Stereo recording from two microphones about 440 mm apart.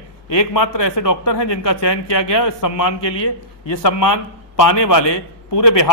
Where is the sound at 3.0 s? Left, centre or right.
Left.